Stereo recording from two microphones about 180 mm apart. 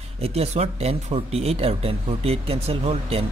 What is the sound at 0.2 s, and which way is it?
Speech, 35° right (ahead or behind).